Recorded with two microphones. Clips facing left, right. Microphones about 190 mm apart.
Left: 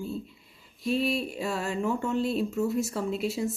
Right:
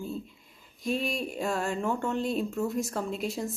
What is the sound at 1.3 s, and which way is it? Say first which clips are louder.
Speech: right 1 dB; 45° right (ahead or behind).